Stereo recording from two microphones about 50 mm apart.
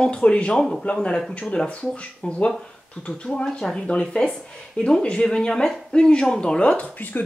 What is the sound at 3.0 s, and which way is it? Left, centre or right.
Speech, left.